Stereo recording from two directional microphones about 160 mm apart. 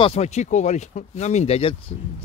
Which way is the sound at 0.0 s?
40° left (ahead or behind).